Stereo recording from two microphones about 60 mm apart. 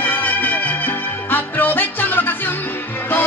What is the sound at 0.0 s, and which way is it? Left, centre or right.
Music, left.